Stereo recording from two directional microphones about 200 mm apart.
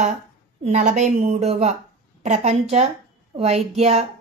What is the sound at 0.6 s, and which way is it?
Speech, 35° right (ahead or behind).